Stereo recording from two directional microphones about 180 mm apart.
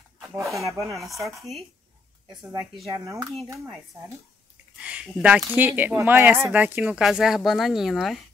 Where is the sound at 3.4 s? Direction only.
20° right (ahead or behind).